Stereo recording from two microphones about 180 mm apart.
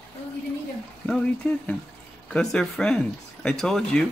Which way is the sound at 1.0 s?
5° left (ahead or behind).